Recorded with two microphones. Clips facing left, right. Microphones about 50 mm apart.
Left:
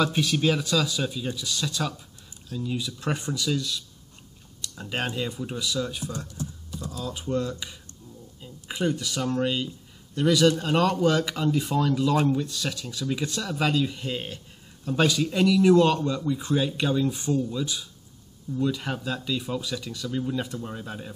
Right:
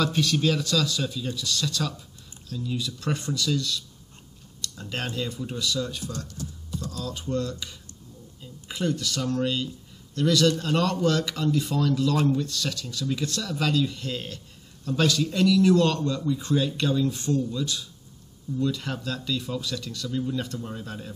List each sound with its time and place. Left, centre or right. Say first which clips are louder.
0.0 s speech: left 1 dB; centre